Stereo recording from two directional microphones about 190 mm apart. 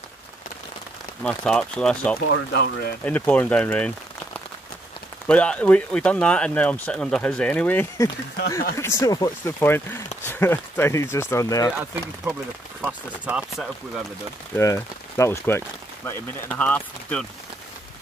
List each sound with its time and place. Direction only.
1.2 s speech: 5° left (ahead or behind)
2.2 s speech: 65° left (ahead or behind)
3.0 s speech: 10° left (ahead or behind)
5.2 s speech: 5° left (ahead or behind)
11.8 s speech: 10° right (ahead or behind)
14.6 s speech: 15° left (ahead or behind)